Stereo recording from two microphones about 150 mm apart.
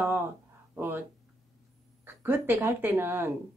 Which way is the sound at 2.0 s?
15° right (ahead or behind).